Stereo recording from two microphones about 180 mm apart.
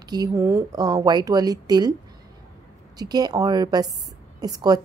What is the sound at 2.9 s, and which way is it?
Speech, 20° right (ahead or behind).